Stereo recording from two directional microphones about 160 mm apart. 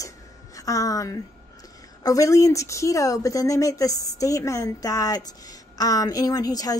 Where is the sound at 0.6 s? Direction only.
20° left (ahead or behind).